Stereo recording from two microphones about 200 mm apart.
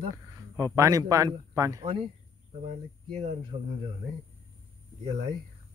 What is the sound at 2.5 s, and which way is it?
A man's voice, 35° right (ahead or behind).